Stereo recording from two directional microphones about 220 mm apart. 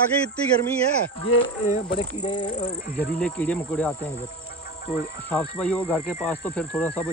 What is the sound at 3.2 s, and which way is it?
Speech, 5° left (ahead or behind).